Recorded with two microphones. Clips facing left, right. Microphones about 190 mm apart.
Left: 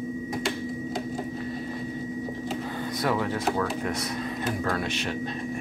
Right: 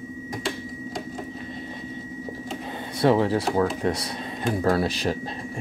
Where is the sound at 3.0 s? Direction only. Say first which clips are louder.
Right 8 dB; 30° right (ahead or behind).